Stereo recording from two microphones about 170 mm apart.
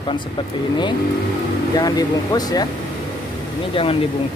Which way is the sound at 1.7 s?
20° left (ahead or behind).